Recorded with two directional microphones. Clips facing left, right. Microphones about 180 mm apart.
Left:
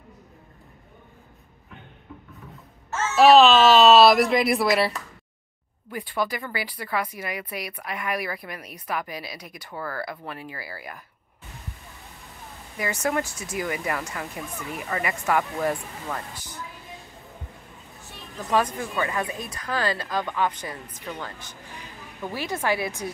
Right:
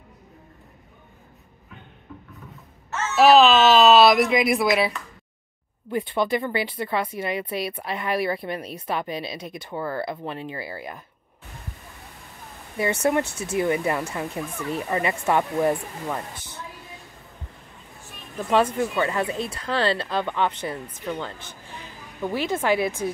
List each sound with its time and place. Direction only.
3.2 s speech: centre (ahead or behind)
5.9 s speech: 25° right (ahead or behind)
12.7 s speech: 30° right (ahead or behind)
18.5 s speech: 25° right (ahead or behind)
22.3 s speech: 20° right (ahead or behind)